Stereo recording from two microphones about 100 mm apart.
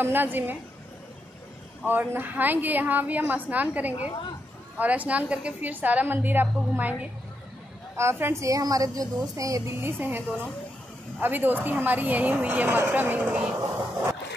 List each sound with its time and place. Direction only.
0.0 s a woman's voice: 20° right (ahead or behind)
1.9 s a woman's voice: 20° right (ahead or behind); by 9.6 s 35° right (ahead or behind)
9.8 s a woman's voice: 20° right (ahead or behind)